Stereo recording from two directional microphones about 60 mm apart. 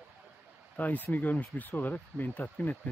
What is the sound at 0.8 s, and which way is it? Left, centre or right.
Speech, left.